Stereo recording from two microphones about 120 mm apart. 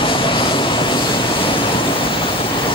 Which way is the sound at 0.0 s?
45° left (ahead or behind).